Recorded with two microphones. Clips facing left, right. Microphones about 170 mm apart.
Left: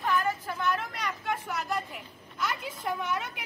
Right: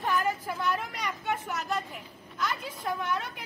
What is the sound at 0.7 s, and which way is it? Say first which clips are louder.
Speech: even; centre (ahead or behind).